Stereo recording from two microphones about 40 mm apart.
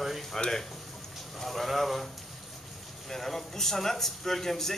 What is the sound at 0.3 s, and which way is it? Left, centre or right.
A man's voice, centre.